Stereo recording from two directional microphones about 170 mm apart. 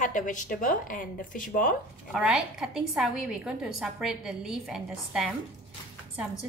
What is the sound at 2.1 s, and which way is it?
A woman's voice, 5° right (ahead or behind).